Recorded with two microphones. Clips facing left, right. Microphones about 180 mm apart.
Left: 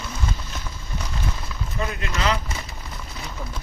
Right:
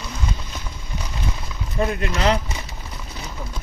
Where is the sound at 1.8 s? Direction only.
35° right (ahead or behind).